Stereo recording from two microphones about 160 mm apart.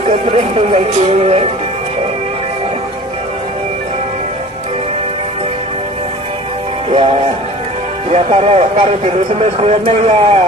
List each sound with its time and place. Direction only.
0.0 s speech: 35° right (ahead or behind)
6.9 s music: 35° right (ahead or behind)
8.1 s speech: 40° right (ahead or behind)